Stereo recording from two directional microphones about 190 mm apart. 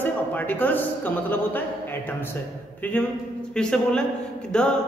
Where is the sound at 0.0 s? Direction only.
10° left (ahead or behind).